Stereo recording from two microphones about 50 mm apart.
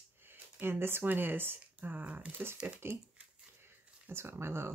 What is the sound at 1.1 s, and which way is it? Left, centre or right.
Speech, right.